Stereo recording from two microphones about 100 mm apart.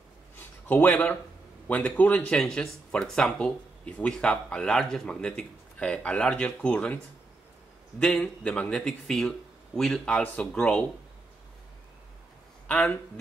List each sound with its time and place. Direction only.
0.7 s speech: 20° left (ahead or behind)
8.0 s speech: 10° left (ahead or behind)
12.6 s speech: 10° left (ahead or behind)